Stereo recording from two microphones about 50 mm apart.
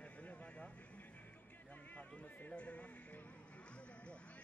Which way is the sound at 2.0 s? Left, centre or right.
Left.